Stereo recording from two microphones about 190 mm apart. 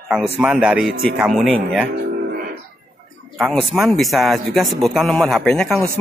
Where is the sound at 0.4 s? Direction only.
5° right (ahead or behind).